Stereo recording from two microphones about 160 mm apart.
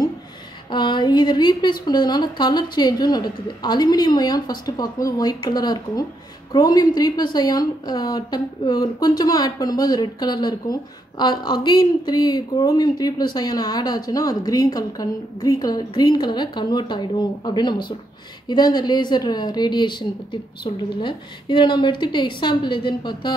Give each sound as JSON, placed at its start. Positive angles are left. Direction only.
{"t": 0.7, "sound": "a woman's voice", "side_deg": 30}